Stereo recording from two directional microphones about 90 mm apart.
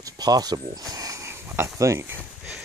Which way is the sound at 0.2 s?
50° right (ahead or behind).